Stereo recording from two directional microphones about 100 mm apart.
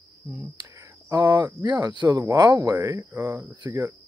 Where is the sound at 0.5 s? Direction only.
40° right (ahead or behind).